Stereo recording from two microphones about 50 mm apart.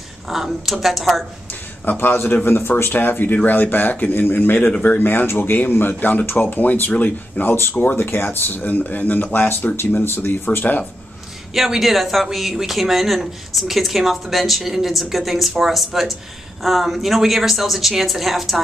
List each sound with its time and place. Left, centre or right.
0.3 s speech: centre
1.9 s speech: left
4.6 s speech: left
4.9 s speech: left
10.0 s speech: left
11.5 s speech: centre